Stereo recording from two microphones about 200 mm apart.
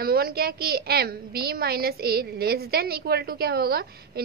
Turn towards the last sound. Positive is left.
turn(degrees=-50)  # may be behind; listen again after turning